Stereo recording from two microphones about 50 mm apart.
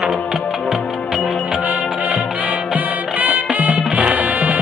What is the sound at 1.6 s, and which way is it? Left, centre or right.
Music, right.